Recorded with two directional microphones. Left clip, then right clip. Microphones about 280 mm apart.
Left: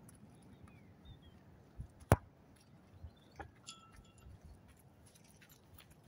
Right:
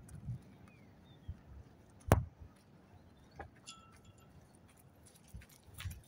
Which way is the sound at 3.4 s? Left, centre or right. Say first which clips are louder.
Right 1 dB; centre.